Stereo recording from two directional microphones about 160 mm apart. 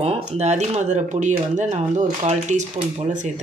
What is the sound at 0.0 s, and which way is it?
Speech, 45° right (ahead or behind).